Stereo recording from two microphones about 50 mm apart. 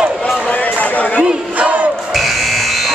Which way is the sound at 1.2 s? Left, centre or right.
Right.